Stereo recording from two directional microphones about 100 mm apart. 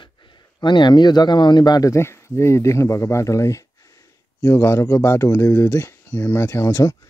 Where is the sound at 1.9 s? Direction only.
25° left (ahead or behind).